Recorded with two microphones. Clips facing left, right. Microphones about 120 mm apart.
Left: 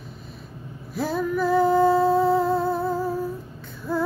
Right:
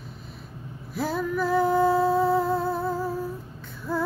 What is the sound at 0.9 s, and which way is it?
Female singing, 20° left (ahead or behind).